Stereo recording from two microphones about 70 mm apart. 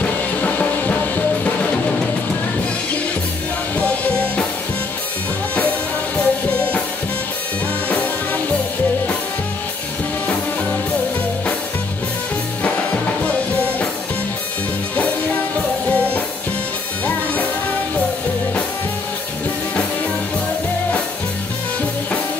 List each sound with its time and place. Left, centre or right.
0.0 s music: left
6.1 s music: centre
7.9 s music: left